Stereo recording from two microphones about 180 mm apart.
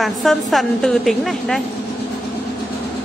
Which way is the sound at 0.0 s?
Centre (ahead or behind).